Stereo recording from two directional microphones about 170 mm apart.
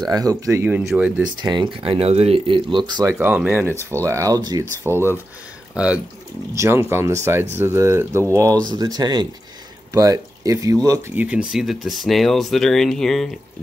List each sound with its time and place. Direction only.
0.0 s speech: 20° right (ahead or behind)
0.7 s speech: 5° right (ahead or behind)
1.4 s speech: 25° right (ahead or behind)
3.1 s speech: 10° right (ahead or behind)
6.5 s speech: 15° right (ahead or behind); by 13.3 s centre (ahead or behind)